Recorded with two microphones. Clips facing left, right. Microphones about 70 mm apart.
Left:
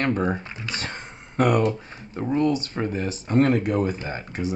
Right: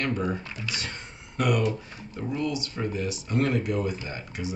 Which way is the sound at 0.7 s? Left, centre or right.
Left.